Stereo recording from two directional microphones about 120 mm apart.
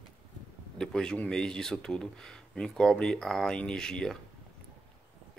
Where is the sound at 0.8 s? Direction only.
5° left (ahead or behind).